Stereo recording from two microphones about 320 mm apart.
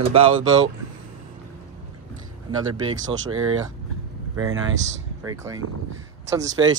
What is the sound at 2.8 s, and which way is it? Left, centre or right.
Speech, right.